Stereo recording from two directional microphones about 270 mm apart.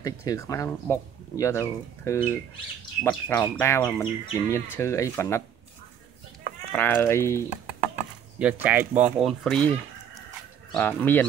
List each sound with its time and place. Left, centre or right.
0.0 s speech: centre
6.7 s speech: centre
8.4 s speech: centre